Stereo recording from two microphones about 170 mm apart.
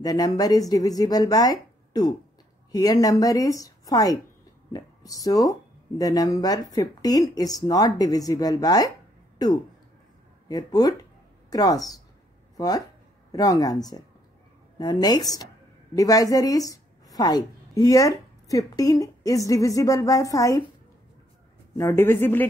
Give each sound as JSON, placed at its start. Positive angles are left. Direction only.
{"t": 0.0, "sound": "speech", "side_deg": 20}
{"t": 10.5, "sound": "a woman's voice", "side_deg": 25}
{"t": 21.7, "sound": "speech", "side_deg": 15}